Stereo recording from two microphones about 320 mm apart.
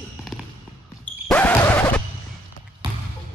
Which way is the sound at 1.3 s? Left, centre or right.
Centre.